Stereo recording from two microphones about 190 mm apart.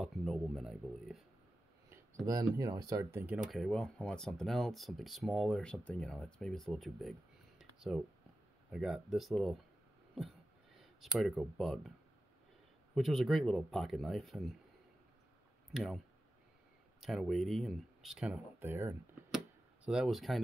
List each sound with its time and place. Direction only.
0.0 s speech: centre (ahead or behind)
1.9 s a sound: 15° right (ahead or behind)
2.5 s speech: 20° right (ahead or behind)
3.4 s speech: centre (ahead or behind)
10.1 s a sound: centre (ahead or behind)
12.9 s speech: centre (ahead or behind)
15.7 s speech: centre (ahead or behind)
17.0 s speech: centre (ahead or behind)
19.3 s a sound: 5° right (ahead or behind)